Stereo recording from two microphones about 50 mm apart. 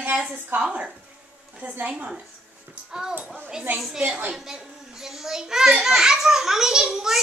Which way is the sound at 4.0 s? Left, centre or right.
Right.